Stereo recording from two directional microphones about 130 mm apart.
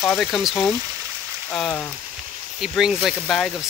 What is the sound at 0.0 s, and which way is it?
Speech, 5° left (ahead or behind).